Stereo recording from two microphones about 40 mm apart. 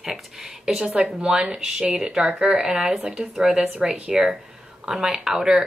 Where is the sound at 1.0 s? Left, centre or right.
Right.